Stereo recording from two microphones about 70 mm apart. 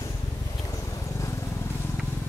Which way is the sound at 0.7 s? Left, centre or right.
Left.